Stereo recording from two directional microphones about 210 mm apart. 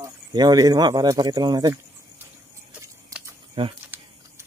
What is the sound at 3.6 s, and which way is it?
Speech, 25° right (ahead or behind).